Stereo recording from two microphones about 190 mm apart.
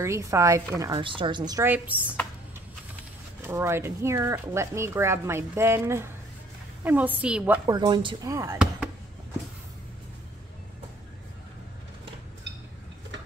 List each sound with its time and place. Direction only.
0.0 s speech: 15° right (ahead or behind)
3.4 s speech: 15° right (ahead or behind)
7.7 s speech: 25° right (ahead or behind)
8.5 s a sound: 5° right (ahead or behind)